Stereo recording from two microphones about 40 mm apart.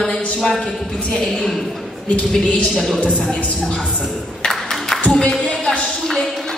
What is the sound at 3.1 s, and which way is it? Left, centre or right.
Speech, centre.